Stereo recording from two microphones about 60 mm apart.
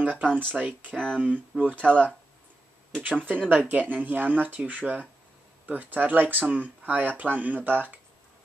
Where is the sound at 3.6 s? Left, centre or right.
Right.